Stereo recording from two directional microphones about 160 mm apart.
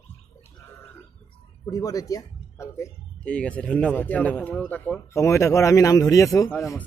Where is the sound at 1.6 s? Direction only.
20° left (ahead or behind).